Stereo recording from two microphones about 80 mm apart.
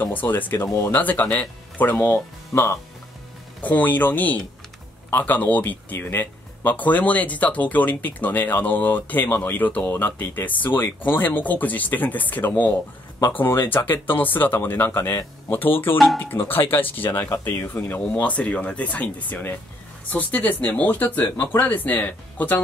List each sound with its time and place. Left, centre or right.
0.0 s speech: left
3.6 s speech: left